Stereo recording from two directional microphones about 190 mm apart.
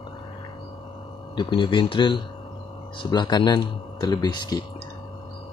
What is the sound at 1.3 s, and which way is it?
Speech, 25° left (ahead or behind).